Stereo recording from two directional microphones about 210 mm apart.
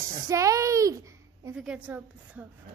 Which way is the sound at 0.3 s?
15° right (ahead or behind).